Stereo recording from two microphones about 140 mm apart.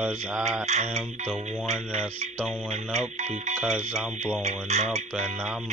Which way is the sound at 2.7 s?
55° right (ahead or behind).